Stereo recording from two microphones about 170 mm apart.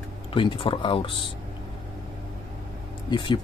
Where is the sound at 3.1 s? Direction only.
30° left (ahead or behind).